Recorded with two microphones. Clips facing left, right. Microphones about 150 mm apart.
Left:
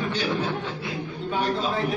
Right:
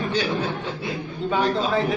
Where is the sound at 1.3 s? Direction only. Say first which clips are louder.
Right 4 dB; 90° right.